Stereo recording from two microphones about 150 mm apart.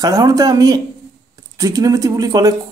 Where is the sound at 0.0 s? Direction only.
25° right (ahead or behind).